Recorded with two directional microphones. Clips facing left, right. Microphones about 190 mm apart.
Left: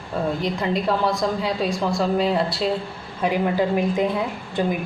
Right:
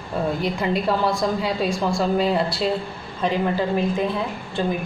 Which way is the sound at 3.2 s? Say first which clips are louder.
Left 1 dB; 15° left (ahead or behind).